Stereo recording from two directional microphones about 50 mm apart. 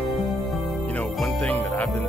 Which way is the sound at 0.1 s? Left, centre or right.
Centre.